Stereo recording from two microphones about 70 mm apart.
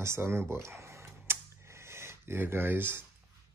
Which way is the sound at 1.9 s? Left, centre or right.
Right.